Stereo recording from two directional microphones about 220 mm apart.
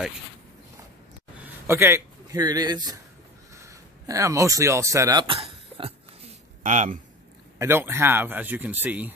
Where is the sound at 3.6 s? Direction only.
15° right (ahead or behind); by 7.0 s 35° right (ahead or behind).